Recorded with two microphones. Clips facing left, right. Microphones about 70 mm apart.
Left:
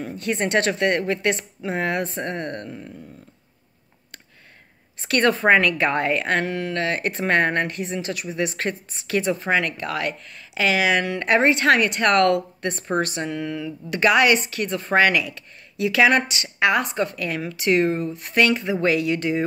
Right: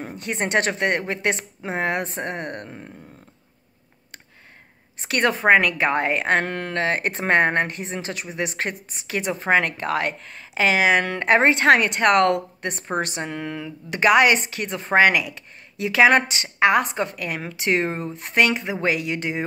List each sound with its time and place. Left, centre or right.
0.0 s speech: right
5.0 s speech: centre
6.4 s speech: right; by 9.4 s centre
9.4 s speech: right